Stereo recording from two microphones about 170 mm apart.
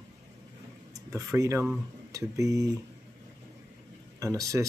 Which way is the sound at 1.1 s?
15° right (ahead or behind).